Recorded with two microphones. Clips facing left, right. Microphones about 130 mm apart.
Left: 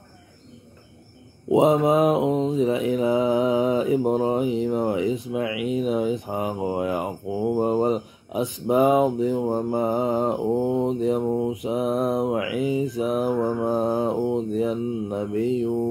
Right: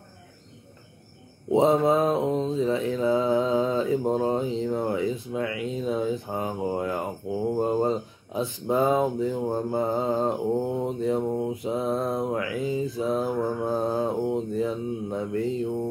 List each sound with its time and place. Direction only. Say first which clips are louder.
1.5 s mantra: left 2 dB; 15° left (ahead or behind)